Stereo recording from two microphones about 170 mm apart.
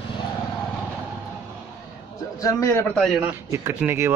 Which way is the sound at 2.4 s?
15° left (ahead or behind).